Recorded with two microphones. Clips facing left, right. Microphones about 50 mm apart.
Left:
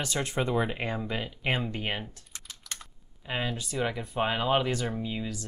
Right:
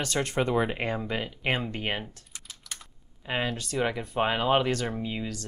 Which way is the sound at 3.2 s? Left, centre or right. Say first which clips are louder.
Right 2 dB; right.